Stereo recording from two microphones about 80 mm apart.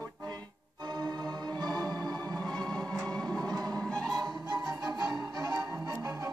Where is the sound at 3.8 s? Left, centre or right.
Centre.